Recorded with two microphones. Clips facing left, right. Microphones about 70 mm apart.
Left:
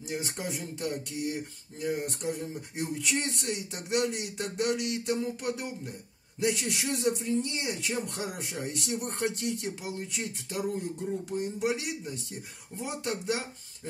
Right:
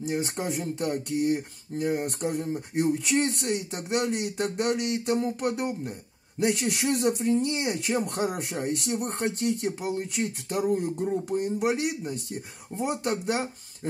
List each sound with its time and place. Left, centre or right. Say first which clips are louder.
0.0 s speech: right 6 dB; right